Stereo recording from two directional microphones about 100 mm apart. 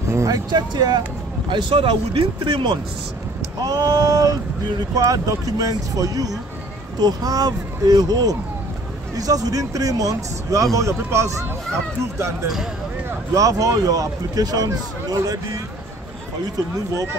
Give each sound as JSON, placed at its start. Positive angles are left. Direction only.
{"t": 0.1, "sound": "a sound", "side_deg": -30}
{"t": 0.5, "sound": "speech", "side_deg": -45}
{"t": 1.5, "sound": "speech", "side_deg": -55}
{"t": 3.6, "sound": "speech", "side_deg": -35}
{"t": 16.7, "sound": "speech", "side_deg": -35}